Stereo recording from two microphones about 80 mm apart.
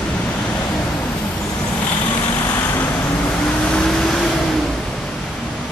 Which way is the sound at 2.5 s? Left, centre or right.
Left.